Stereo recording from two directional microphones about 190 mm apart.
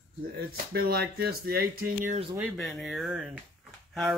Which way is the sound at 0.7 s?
55° right (ahead or behind).